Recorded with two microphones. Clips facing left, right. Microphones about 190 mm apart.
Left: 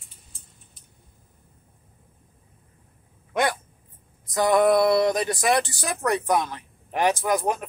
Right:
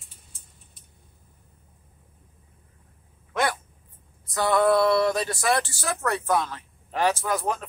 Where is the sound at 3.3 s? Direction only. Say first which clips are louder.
Left 2 dB; 20° left (ahead or behind).